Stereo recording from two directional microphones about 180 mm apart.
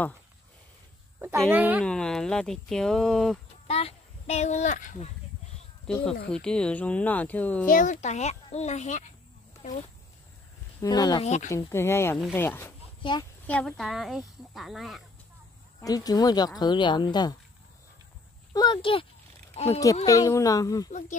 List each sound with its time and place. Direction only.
1.5 s speech: 10° right (ahead or behind)
1.9 s speech: 5° left (ahead or behind)
3.6 s speech: 35° left (ahead or behind)
5.9 s speech: 5° left (ahead or behind)
7.6 s a child's voice: 45° left (ahead or behind)
10.8 s a woman's voice: 20° left (ahead or behind)
11.2 s a child's voice: 40° left (ahead or behind)
11.5 s speech: 15° left (ahead or behind)
13.0 s a woman's voice: 25° left (ahead or behind)
13.5 s speech: 5° left (ahead or behind)
15.8 s a woman's voice: 20° left (ahead or behind)
18.5 s a woman's voice: 25° left (ahead or behind)
20.1 s a woman's voice: 15° left (ahead or behind)